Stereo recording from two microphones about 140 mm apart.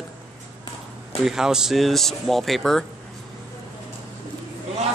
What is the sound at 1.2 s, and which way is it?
Speech, 5° right (ahead or behind).